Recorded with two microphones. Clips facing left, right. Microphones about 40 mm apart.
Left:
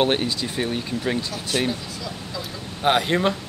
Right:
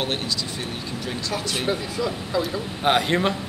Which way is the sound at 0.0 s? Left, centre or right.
Left.